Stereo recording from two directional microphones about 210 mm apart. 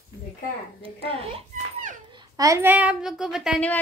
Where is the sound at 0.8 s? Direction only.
25° right (ahead or behind).